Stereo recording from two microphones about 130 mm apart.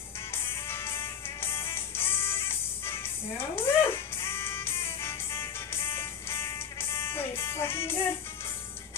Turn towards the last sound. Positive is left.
turn(degrees=20)  # may be behind; listen again after turning